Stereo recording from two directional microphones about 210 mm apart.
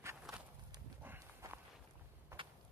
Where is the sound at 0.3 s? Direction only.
Centre (ahead or behind).